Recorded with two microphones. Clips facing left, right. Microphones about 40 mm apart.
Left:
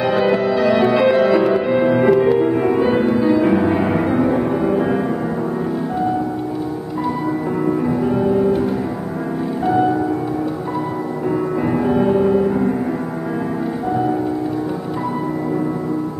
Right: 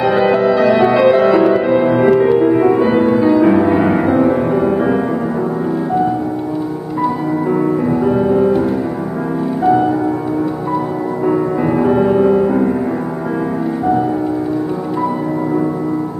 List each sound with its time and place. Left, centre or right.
0.0 s music: centre
8.0 s music: centre
11.2 s music: centre